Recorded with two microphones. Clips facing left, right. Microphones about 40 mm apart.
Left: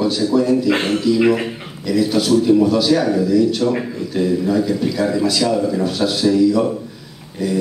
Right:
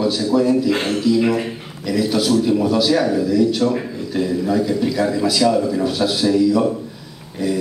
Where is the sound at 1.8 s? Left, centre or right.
Centre.